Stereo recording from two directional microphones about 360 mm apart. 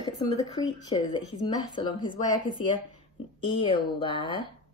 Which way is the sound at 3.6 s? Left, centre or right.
Centre.